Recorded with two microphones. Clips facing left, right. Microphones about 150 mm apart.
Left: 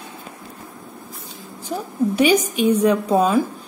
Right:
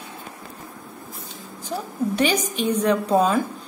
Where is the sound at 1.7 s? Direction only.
10° left (ahead or behind).